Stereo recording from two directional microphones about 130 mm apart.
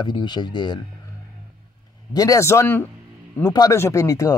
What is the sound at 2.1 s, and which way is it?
Speech, 25° left (ahead or behind).